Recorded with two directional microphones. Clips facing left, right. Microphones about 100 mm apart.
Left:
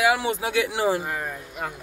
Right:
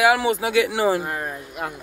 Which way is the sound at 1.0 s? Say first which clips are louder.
Right 2 dB; 45° right (ahead or behind).